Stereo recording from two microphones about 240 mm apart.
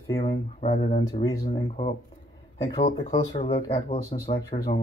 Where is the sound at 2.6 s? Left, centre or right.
Left.